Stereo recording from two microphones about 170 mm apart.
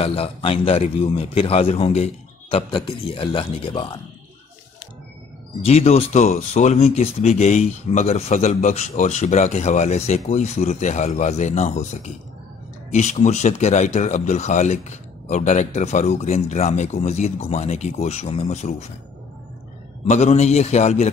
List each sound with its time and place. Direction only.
0.0 s speech: 35° left (ahead or behind)
5.6 s speech: 35° left (ahead or behind)
20.1 s speech: 40° left (ahead or behind)